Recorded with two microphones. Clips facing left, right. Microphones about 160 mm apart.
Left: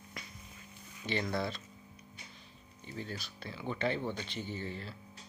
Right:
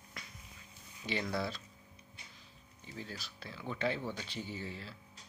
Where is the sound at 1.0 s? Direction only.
5° right (ahead or behind).